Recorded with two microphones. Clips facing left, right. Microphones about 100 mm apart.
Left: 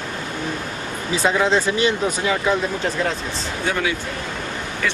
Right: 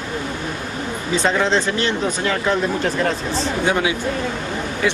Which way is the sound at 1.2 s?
5° left (ahead or behind).